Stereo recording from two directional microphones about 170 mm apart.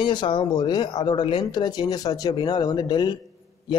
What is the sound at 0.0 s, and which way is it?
Speech, 30° left (ahead or behind).